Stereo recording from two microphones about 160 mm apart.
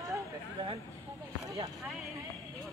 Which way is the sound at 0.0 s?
20° right (ahead or behind).